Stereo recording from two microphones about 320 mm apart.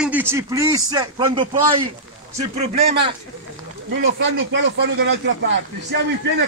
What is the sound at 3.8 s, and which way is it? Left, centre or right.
Speech, right.